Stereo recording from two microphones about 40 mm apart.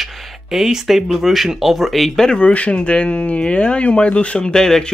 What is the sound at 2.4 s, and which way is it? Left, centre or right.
Speech, left.